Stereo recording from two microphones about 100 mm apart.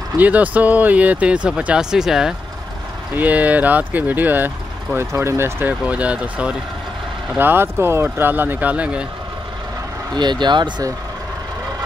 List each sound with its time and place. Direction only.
0.2 s speech: 15° right (ahead or behind)
3.2 s speech: 15° right (ahead or behind)
10.4 s speech: 50° right (ahead or behind)